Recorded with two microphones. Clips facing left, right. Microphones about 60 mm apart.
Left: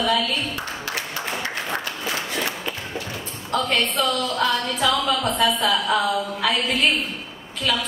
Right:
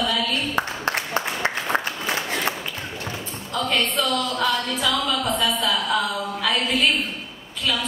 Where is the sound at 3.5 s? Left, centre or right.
Centre.